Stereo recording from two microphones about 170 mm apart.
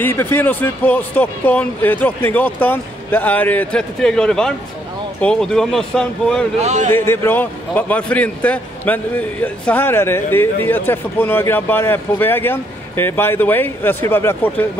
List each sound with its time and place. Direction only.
0.0 s a man's voice: 15° left (ahead or behind)
6.6 s speech: 45° right (ahead or behind)
6.9 s a man's voice: 15° left (ahead or behind)